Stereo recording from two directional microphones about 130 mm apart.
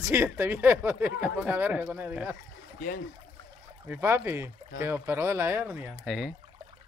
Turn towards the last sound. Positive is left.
turn(degrees=0)  # may be behind; listen again after turning